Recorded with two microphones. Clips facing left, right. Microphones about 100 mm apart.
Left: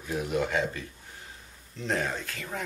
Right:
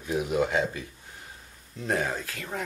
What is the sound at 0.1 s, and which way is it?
Speech, 10° right (ahead or behind).